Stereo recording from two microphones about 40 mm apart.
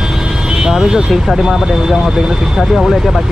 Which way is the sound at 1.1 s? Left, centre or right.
Centre.